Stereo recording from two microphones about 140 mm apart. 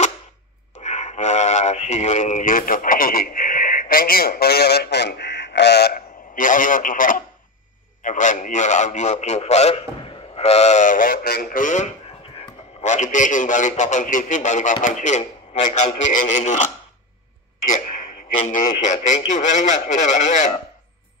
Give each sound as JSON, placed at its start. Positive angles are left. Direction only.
{"t": 0.7, "sound": "speech", "side_deg": 55}
{"t": 5.9, "sound": "a man's voice", "side_deg": 70}
{"t": 17.6, "sound": "a sound", "side_deg": 65}
{"t": 18.5, "sound": "a man's voice", "side_deg": 65}